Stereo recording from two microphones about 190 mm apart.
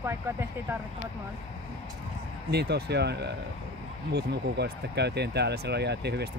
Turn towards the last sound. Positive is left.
turn(degrees=-60)  # may be behind; listen again after turning